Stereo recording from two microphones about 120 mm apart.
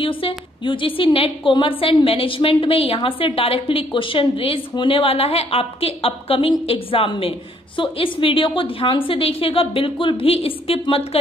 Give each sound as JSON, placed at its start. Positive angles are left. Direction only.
{"t": 0.0, "sound": "a woman's voice", "side_deg": 45}